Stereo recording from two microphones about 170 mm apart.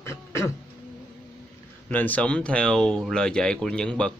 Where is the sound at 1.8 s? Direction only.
10° left (ahead or behind).